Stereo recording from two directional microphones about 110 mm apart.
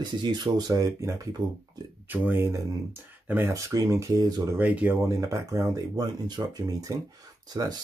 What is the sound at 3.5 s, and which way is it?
Speech, 30° right (ahead or behind).